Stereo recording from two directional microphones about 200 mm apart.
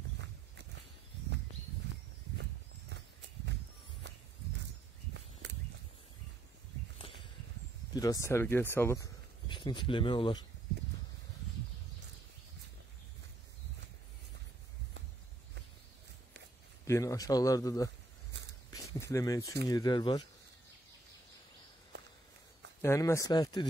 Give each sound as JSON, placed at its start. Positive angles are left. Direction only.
{"t": 2.9, "sound": "horse", "side_deg": -60}
{"t": 4.1, "sound": "walk", "side_deg": -60}
{"t": 5.1, "sound": "a sound", "side_deg": -65}
{"t": 7.9, "sound": "speech", "side_deg": 20}
{"t": 16.8, "sound": "speech", "side_deg": 15}
{"t": 19.1, "sound": "speech", "side_deg": 15}
{"t": 22.8, "sound": "speech", "side_deg": 15}